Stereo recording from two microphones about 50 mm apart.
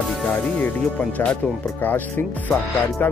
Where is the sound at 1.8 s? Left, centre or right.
Left.